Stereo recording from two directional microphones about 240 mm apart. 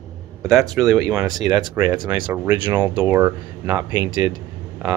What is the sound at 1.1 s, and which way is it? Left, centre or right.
Speech, centre.